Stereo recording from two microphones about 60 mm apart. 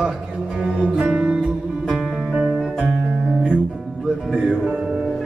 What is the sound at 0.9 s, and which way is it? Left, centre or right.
Music, right.